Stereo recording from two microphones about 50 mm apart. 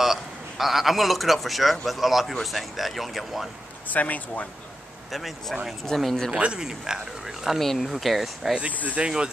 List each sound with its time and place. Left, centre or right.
0.0 s a man's voice: centre
3.9 s speech: left
5.1 s speech: centre
6.3 s speech: centre
8.9 s speech: centre